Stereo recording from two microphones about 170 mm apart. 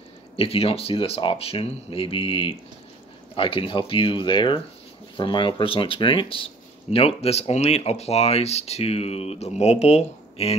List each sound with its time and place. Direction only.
0.4 s speech: 35° left (ahead or behind)